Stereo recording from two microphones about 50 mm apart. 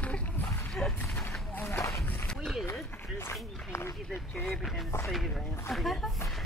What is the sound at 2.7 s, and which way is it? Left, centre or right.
Speech, left.